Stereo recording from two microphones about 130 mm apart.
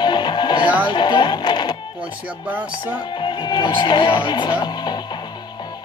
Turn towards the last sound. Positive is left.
turn(degrees=35)  # may be behind; listen again after turning